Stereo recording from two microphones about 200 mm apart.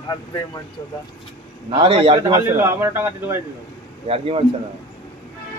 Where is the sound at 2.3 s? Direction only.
15° right (ahead or behind).